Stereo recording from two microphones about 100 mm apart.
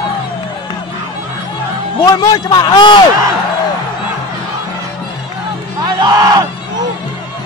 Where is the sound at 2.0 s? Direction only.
40° left (ahead or behind).